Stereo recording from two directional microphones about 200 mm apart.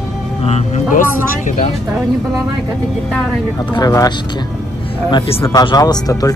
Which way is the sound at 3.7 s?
20° left (ahead or behind).